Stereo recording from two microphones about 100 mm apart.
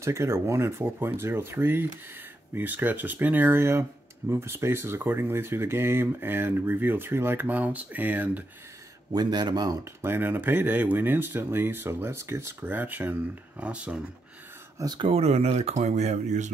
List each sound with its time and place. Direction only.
0.0 s speech: 30° right (ahead or behind)
9.1 s a man's voice: 45° right (ahead or behind)
10.0 s speech: 20° right (ahead or behind)
15.0 s speech: 75° right (ahead or behind)